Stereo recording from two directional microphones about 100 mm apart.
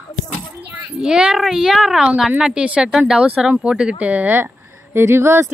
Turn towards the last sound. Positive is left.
turn(degrees=-25)  # may be behind; listen again after turning